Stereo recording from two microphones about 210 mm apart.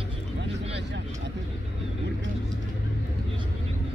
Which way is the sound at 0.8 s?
55° right (ahead or behind).